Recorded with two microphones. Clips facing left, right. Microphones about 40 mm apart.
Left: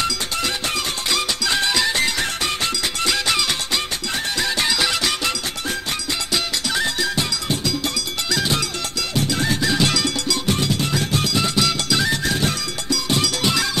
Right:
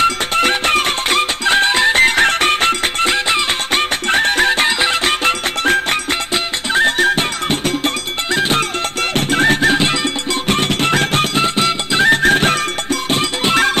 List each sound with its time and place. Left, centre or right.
0.0 s music: right
4.1 s music: right
10.4 s music: right
13.1 s music: right